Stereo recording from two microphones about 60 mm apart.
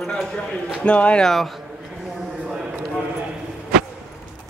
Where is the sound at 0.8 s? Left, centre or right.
Centre.